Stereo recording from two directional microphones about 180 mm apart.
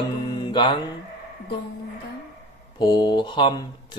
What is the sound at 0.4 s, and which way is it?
Mantra, 25° left (ahead or behind).